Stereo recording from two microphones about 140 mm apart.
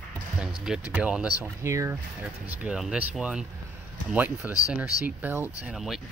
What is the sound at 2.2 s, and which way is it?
Speech, 10° right (ahead or behind).